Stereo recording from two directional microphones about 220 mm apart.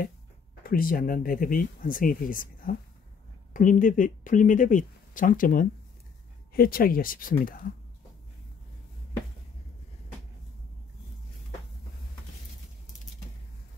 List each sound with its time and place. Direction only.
0.7 s speech: 40° left (ahead or behind)